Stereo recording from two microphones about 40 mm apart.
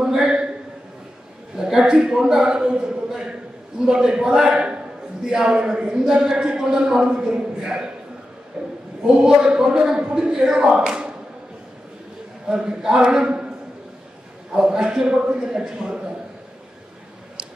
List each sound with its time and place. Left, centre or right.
0.0 s a sound: centre
1.6 s speech: centre
3.8 s a man's voice: centre
12.4 s a man's voice: centre
14.5 s a man's voice: centre